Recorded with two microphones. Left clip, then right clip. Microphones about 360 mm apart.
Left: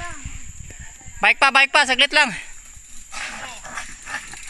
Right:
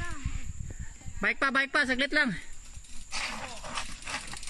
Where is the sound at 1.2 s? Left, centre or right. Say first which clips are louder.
Left 12 dB; centre.